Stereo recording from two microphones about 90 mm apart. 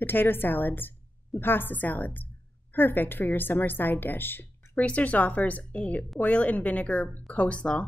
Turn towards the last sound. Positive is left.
turn(degrees=15)  # may be behind; listen again after turning